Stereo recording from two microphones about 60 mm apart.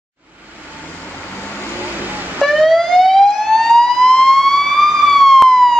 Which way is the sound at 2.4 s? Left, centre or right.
Centre.